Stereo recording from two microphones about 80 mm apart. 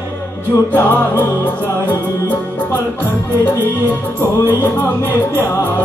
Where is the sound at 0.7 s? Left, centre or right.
Left.